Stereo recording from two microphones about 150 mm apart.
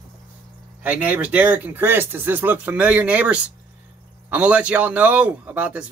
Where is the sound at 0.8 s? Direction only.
10° right (ahead or behind).